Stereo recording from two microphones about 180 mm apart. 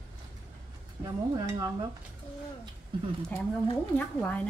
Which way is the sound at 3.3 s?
10° left (ahead or behind).